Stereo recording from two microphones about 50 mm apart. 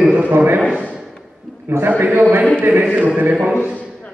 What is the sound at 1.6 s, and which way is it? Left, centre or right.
Speech, right.